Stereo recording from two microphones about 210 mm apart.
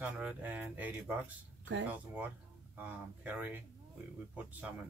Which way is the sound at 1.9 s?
5° right (ahead or behind).